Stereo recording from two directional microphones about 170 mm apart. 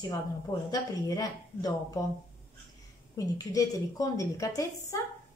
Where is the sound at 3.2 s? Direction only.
20° left (ahead or behind).